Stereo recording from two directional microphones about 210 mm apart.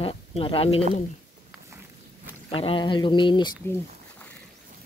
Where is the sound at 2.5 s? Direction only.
25° left (ahead or behind).